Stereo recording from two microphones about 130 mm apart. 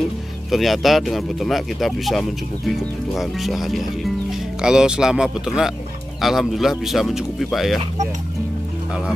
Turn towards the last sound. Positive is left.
turn(degrees=0)  # may be behind; listen again after turning